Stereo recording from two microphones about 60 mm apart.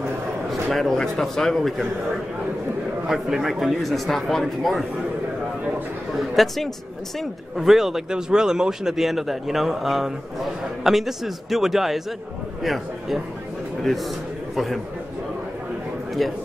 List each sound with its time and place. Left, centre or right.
0.5 s speech: centre
3.1 s speech: centre
6.1 s a man's voice: centre
14.5 s a man's voice: centre
16.2 s speech: centre